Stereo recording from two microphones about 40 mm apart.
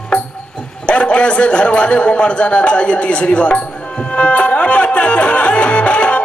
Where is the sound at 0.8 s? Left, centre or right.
Left.